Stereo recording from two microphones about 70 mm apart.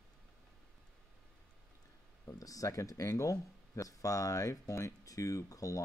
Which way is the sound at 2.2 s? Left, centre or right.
Left.